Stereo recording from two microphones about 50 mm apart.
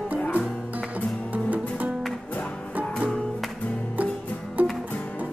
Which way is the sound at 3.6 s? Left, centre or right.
Left.